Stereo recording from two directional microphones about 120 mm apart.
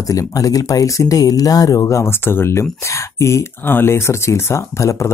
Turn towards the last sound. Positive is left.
turn(degrees=25)  # may be behind; listen again after turning